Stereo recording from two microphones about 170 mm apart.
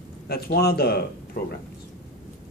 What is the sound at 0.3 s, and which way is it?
Speech, 65° left (ahead or behind).